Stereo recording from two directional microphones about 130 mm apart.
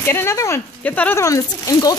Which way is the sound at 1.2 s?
25° left (ahead or behind).